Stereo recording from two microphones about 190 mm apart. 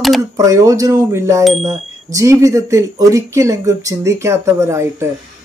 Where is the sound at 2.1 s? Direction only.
15° right (ahead or behind).